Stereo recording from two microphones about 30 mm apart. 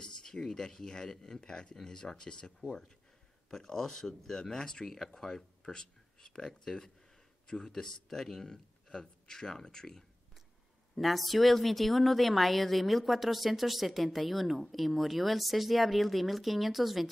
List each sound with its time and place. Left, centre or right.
0.0 s speech: centre
1.4 s speech: left
1.8 s speech: centre
4.8 s speech: centre
5.6 s speech: left
7.4 s speech: left
7.7 s speech: centre
11.0 s a woman's voice: centre